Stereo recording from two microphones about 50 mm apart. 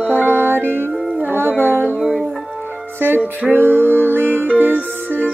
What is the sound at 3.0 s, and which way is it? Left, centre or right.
Music, right.